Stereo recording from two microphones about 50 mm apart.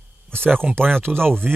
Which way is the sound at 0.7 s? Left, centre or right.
Right.